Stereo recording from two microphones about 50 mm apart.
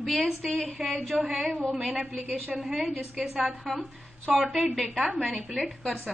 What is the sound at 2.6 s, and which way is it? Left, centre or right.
A woman's voice, centre.